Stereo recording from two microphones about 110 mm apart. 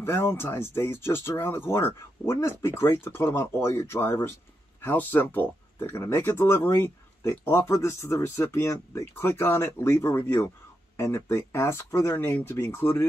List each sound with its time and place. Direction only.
0.0 s speech: 20° left (ahead or behind)